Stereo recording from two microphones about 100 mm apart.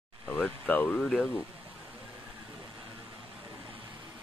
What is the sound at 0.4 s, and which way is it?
Speech, 15° left (ahead or behind).